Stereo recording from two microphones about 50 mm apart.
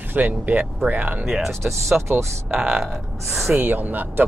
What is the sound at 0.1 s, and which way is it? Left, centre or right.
Speech, right.